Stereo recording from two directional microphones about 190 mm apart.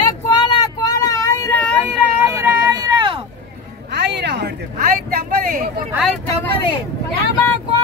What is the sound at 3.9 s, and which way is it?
Speech, 65° right (ahead or behind).